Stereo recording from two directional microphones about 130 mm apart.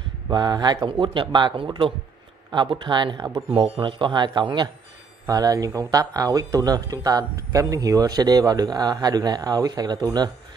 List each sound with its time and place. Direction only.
0.3 s speech: 35° right (ahead or behind)